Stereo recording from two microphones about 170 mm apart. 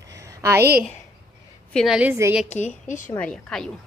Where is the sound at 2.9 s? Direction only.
50° left (ahead or behind).